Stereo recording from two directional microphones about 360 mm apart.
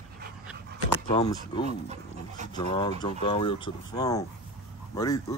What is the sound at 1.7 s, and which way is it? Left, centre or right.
Speech, centre.